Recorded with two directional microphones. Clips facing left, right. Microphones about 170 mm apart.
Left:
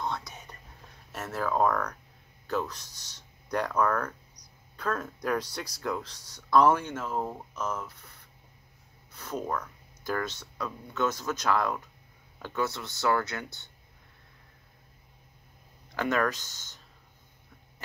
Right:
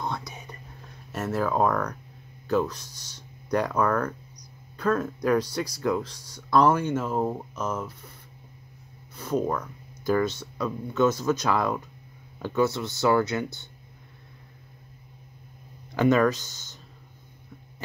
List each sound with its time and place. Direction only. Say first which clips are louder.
0.0 s whispering: right 2 dB; 10° right (ahead or behind)
1.1 s speech: right 4 dB; 5° right (ahead or behind)
6.9 s speech: right 7 dB; 15° right (ahead or behind)
9.1 s speech: right 7 dB; 15° right (ahead or behind)
15.9 s speech: right 7 dB; 15° right (ahead or behind)